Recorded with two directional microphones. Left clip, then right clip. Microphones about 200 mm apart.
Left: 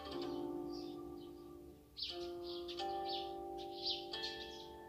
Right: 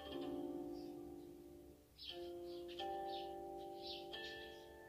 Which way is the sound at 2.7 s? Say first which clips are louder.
Left 3 dB; 35° right (ahead or behind).